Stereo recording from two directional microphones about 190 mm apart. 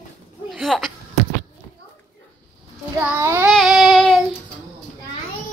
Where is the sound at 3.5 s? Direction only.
Centre (ahead or behind).